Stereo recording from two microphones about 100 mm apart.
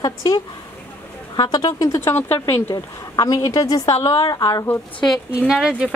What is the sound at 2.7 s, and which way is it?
Speech, 40° left (ahead or behind).